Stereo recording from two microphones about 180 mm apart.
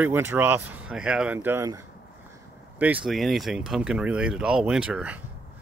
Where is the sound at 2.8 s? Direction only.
5° right (ahead or behind).